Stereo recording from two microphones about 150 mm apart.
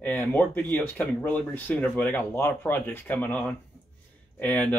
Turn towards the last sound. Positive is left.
turn(degrees=10)  # may be behind; listen again after turning